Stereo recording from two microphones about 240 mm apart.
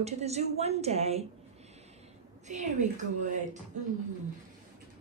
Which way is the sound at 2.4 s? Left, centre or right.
Right.